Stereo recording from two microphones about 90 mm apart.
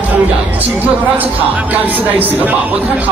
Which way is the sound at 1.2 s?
20° right (ahead or behind).